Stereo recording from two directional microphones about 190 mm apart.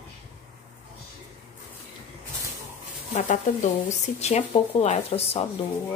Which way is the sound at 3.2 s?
40° left (ahead or behind).